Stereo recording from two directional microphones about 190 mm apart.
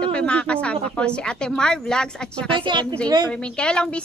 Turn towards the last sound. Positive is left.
turn(degrees=5)  # may be behind; listen again after turning